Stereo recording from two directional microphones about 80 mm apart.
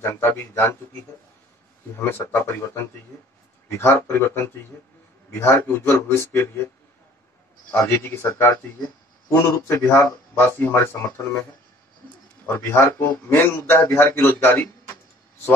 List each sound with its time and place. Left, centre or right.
0.0 s a man's voice: left
2.0 s a man's voice: left
7.7 s speech: left
12.4 s a man's voice: left